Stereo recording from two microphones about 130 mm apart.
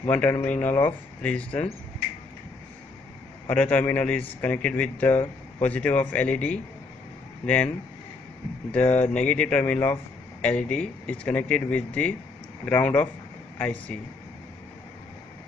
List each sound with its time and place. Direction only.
0.0 s speech: 15° left (ahead or behind)
3.4 s speech: 10° left (ahead or behind)
9.1 s speech: 10° left (ahead or behind)